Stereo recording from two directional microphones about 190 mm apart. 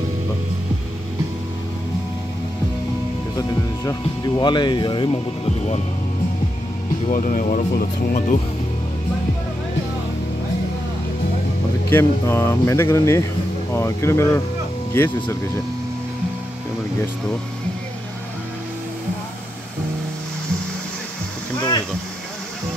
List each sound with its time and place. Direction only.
3.3 s speech: 20° left (ahead or behind)
7.1 s speech: 40° left (ahead or behind)
11.9 s speech: 10° left (ahead or behind)